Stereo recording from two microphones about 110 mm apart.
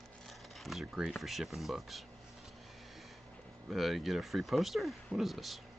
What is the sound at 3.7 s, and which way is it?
Speech, centre (ahead or behind).